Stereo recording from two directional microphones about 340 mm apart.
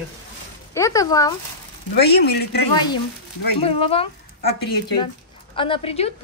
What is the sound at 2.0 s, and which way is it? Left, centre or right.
Speech, left.